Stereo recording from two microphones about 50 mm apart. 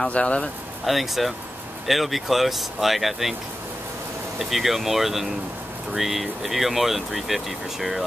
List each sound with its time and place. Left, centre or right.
0.1 s speech: left
0.8 s speech: centre
4.4 s speech: centre